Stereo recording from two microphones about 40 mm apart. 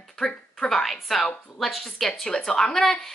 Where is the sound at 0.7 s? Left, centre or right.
Centre.